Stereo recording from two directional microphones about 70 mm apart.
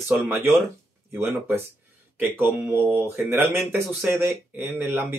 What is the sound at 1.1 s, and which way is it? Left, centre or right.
Speech, right.